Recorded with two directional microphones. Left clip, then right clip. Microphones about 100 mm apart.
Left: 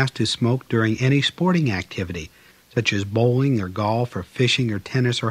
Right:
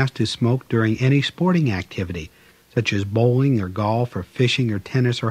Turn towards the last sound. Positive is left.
turn(degrees=40)  # may be behind; listen again after turning